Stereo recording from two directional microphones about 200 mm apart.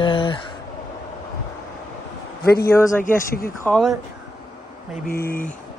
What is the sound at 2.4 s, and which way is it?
Speech, 50° left (ahead or behind).